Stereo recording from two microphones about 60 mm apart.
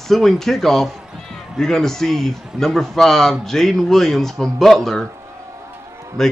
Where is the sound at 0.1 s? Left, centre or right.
Centre.